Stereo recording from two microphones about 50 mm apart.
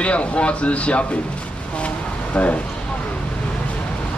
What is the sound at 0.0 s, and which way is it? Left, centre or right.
Speech, left.